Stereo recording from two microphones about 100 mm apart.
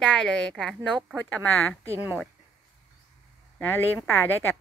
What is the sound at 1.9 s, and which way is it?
Speech, 20° right (ahead or behind).